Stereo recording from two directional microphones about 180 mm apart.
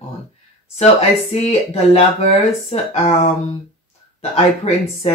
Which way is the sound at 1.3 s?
35° left (ahead or behind).